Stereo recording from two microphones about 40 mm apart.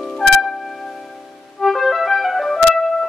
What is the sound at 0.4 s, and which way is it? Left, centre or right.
Music, centre.